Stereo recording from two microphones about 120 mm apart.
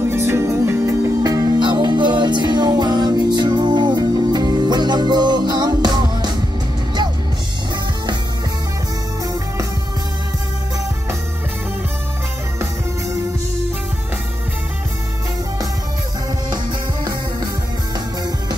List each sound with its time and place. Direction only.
0.1 s music: 20° right (ahead or behind); by 6.3 s 35° right (ahead or behind)